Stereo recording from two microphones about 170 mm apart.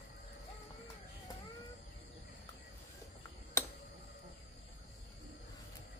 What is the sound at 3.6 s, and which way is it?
Tick-tock, 15° left (ahead or behind).